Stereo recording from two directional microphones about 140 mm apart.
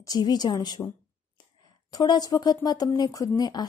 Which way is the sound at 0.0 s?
30° left (ahead or behind).